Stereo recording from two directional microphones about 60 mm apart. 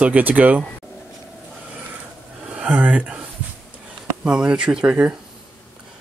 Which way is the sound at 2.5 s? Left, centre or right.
Centre.